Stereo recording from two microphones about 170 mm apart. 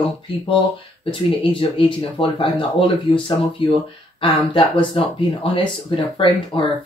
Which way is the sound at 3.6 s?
30° left (ahead or behind).